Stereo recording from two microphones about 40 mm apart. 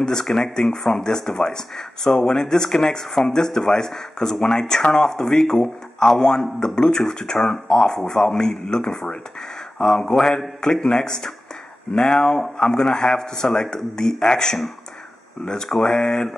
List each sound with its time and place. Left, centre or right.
0.0 s speech: centre